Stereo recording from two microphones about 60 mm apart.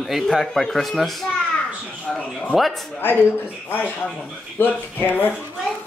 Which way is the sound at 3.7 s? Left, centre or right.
Left.